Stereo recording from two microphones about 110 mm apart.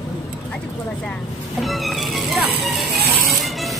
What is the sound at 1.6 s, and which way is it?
Speech, centre (ahead or behind).